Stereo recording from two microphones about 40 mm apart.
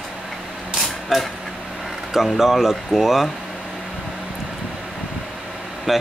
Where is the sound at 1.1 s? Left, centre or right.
Centre.